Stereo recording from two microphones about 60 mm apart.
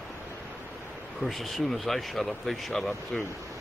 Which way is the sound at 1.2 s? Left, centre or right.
Centre.